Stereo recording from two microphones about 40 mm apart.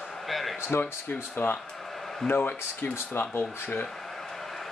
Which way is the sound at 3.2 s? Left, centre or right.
Left.